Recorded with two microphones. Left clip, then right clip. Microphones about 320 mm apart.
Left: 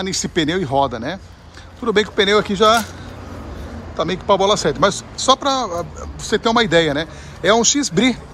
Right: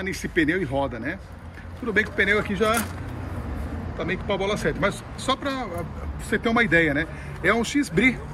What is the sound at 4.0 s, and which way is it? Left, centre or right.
Speech, centre.